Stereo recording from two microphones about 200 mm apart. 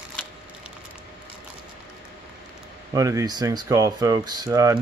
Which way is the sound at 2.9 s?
15° right (ahead or behind).